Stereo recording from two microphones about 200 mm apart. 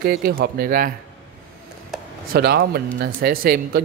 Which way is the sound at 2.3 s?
50° right (ahead or behind).